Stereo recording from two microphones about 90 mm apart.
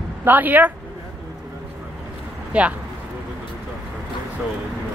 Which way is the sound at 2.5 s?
15° right (ahead or behind).